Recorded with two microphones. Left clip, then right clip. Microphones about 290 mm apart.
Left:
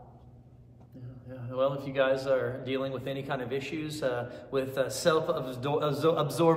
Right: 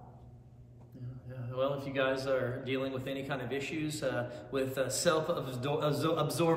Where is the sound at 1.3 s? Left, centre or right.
Centre.